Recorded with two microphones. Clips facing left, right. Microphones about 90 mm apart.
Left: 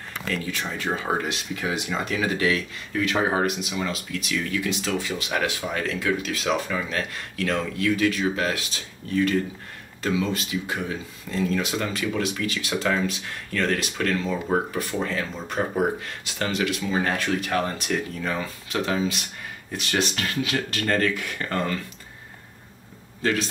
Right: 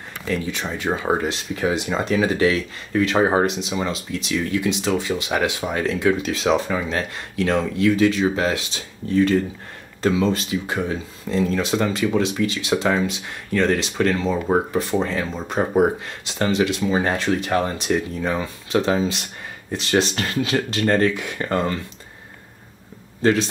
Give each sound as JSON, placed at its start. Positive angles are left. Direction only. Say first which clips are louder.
{"t": 0.3, "sound": "speech", "louder": "right 4 dB", "side_deg": -20}
{"t": 23.2, "sound": "speech", "louder": "right 6 dB", "side_deg": -25}